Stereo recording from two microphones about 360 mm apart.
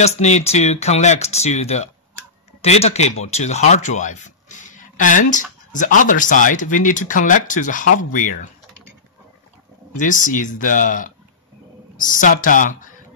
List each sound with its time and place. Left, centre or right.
0.0 s speech: centre
9.9 s speech: left